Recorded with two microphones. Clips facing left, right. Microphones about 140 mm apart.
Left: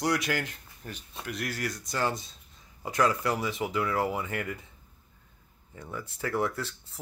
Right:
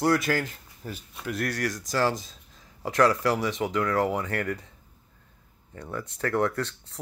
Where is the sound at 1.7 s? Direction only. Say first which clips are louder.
Right 4 dB; 90° right.